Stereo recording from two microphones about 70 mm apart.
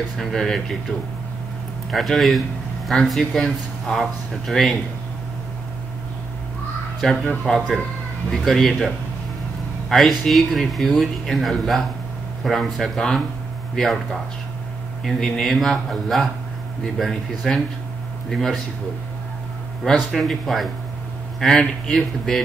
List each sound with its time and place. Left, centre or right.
0.2 s a man's voice: centre
7.0 s a man's voice: centre
15.0 s a man's voice: centre
19.8 s a man's voice: centre